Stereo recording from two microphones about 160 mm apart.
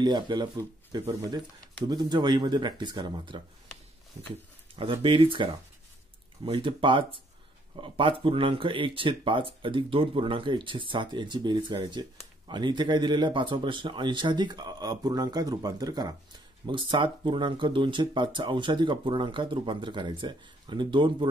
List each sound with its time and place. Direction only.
0.0 s speech: 25° right (ahead or behind)
5.0 s speech: 35° right (ahead or behind)